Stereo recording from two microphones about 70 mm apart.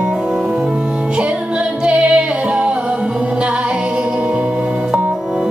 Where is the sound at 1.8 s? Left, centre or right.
Centre.